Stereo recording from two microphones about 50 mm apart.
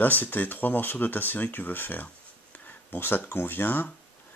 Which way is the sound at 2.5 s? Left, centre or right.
Left.